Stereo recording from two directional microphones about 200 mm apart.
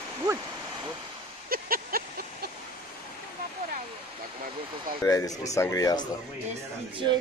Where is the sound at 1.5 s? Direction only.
45° right (ahead or behind).